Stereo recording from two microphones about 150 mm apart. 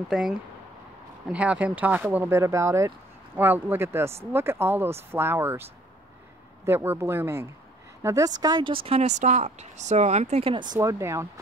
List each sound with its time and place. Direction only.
1.3 s speech: 10° right (ahead or behind); by 10.6 s 40° right (ahead or behind)
10.7 s speech: 20° right (ahead or behind)